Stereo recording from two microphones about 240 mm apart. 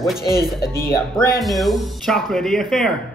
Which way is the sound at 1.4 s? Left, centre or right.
Centre.